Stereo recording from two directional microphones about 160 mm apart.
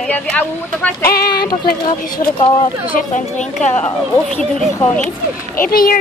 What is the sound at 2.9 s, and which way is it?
Speech, 50° left (ahead or behind).